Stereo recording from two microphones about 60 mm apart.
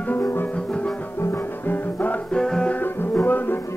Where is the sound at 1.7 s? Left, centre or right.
Left.